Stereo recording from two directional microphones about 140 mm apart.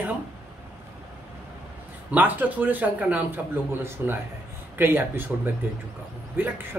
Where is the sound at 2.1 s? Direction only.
10° right (ahead or behind).